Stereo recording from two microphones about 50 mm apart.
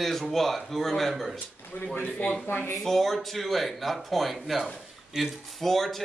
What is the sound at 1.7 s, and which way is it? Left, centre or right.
Speech, left.